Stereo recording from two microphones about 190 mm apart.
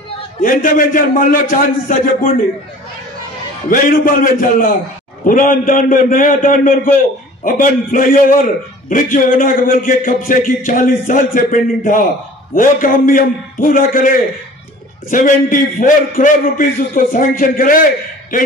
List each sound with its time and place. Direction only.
0.4 s a man's voice: 45° left (ahead or behind)
3.7 s a man's voice: 45° left (ahead or behind)